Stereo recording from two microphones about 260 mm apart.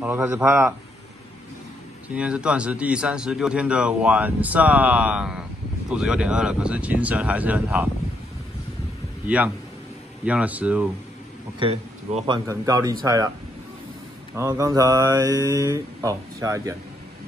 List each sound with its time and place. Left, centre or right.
0.0 s mantra: centre
2.0 s speech: centre
10.2 s speech: centre
11.6 s a man's voice: right
12.4 s mantra: centre
14.3 s mantra: centre